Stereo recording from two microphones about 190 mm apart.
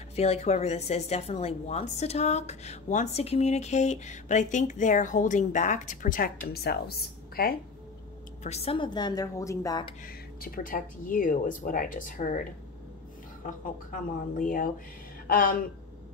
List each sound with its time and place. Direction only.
0.1 s speech: 35° left (ahead or behind); by 7.5 s 55° left (ahead or behind)
8.5 s a woman's voice: 30° left (ahead or behind)
10.0 s speech: 50° left (ahead or behind)